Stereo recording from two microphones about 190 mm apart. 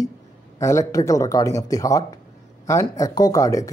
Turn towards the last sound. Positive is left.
turn(degrees=15)  # may be behind; listen again after turning